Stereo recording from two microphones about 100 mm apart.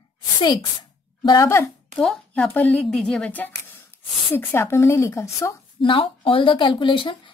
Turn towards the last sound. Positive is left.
turn(degrees=55)  # may be behind; listen again after turning